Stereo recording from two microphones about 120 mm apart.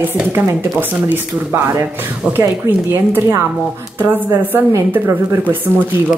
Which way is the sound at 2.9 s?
20° right (ahead or behind).